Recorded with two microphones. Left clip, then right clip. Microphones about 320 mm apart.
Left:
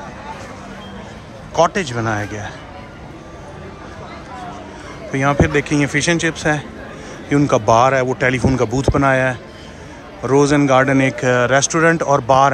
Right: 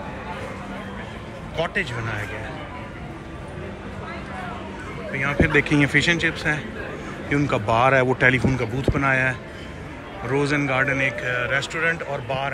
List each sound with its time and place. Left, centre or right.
1.5 s speech: centre
5.2 s speech: centre
11.8 s speech: left
12.1 s speech: centre